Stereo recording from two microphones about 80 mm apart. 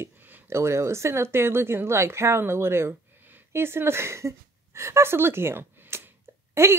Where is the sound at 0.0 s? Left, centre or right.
Right.